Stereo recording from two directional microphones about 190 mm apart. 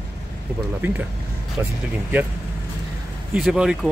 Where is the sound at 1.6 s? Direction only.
10° right (ahead or behind).